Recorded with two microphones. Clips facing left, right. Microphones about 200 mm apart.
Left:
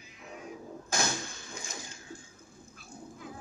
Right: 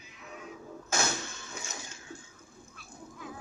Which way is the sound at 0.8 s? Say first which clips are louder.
Right 1 dB; 35° left (ahead or behind).